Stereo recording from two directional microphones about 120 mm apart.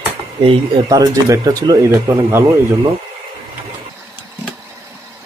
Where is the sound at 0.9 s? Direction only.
30° right (ahead or behind).